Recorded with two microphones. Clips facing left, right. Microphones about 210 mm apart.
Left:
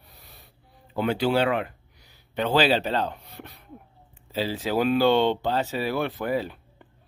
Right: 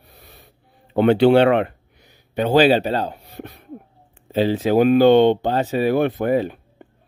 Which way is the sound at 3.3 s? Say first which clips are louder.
Right 8 dB; 55° right (ahead or behind).